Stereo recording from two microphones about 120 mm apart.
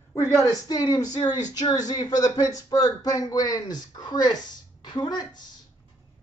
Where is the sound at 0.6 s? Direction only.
35° left (ahead or behind).